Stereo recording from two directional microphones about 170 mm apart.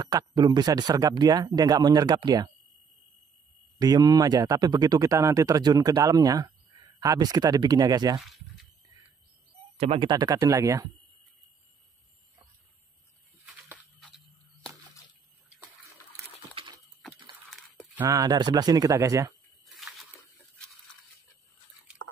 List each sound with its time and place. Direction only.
0.0 s speech: 20° right (ahead or behind)
3.8 s speech: 20° right (ahead or behind)
9.8 s speech: 30° right (ahead or behind)
16.5 s a sound: 30° right (ahead or behind)
17.0 s a sound: centre (ahead or behind)
17.9 s speech: 20° right (ahead or behind)
19.6 s bathtub: centre (ahead or behind)